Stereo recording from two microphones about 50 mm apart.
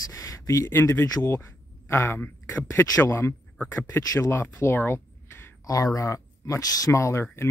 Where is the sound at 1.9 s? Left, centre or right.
Left.